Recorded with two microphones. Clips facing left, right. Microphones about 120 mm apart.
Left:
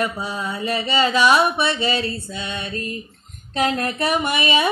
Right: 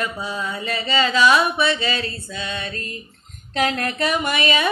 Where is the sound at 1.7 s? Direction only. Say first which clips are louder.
Left 3 dB; 20° left (ahead or behind).